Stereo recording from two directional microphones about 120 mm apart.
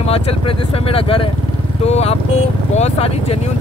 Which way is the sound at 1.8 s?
60° left (ahead or behind).